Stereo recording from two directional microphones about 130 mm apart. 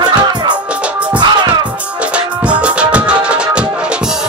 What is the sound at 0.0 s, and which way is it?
Music, 35° right (ahead or behind).